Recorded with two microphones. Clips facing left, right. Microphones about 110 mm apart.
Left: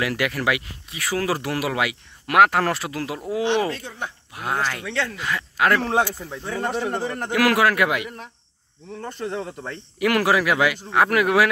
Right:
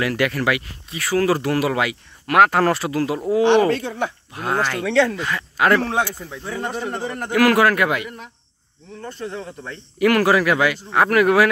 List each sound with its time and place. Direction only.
0.0 s speech: 10° left (ahead or behind)
3.4 s speech: 65° right (ahead or behind); by 4.1 s 80° right
4.3 s speech: 10° left (ahead or behind)
4.7 s speech: 90° right
5.2 s speech: centre (ahead or behind)
9.0 s speech: 55° left (ahead or behind)
9.9 s speech: 10° left (ahead or behind)